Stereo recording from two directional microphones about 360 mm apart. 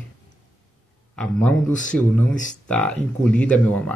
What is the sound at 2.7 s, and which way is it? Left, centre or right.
Speech, centre.